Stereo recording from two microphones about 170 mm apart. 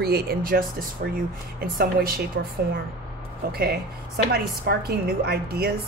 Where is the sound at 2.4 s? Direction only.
90° right.